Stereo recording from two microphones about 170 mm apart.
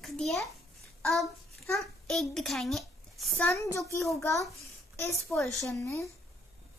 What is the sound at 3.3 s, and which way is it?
A child's voice, 10° left (ahead or behind).